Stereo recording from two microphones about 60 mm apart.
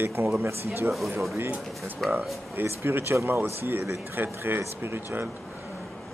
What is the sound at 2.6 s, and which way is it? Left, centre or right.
Speech, right.